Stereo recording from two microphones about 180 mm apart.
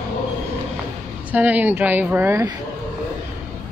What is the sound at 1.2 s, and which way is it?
A woman's voice, 10° right (ahead or behind).